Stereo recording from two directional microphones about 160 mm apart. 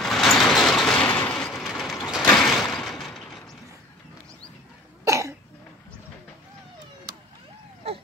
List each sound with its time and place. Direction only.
0.0 s vehicle: centre (ahead or behind)
2.2 s a sound: 5° left (ahead or behind)
5.0 s cough: 20° right (ahead or behind)